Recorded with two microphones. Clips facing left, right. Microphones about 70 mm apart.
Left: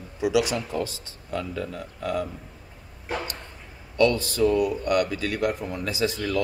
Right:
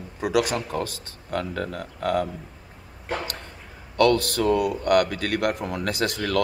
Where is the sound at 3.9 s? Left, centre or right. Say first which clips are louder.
Right 2 dB; right.